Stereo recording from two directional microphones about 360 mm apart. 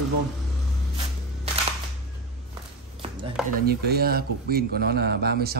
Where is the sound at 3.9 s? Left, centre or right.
Right.